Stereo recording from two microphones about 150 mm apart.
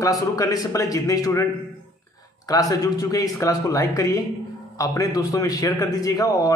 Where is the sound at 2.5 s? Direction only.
25° left (ahead or behind).